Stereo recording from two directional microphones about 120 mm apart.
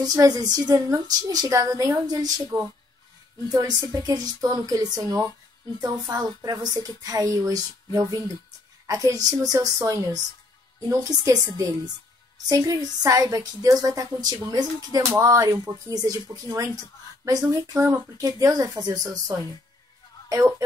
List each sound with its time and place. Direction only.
0.0 s a woman's voice: 30° right (ahead or behind)